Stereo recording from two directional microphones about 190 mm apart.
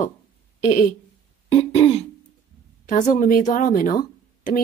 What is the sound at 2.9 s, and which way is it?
Speech, 40° left (ahead or behind).